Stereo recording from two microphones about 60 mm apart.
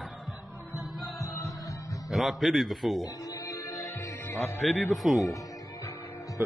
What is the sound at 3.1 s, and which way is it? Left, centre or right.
Music, left.